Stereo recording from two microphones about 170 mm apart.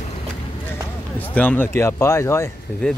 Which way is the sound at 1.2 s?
10° left (ahead or behind).